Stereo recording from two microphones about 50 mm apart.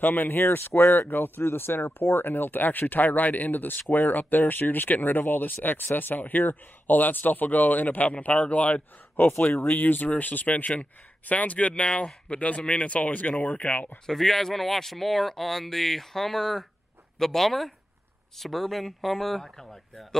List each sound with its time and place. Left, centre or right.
0.0 s speech: left
14.0 s speech: centre